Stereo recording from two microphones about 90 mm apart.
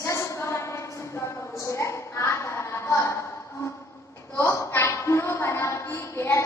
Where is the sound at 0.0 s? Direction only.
35° left (ahead or behind).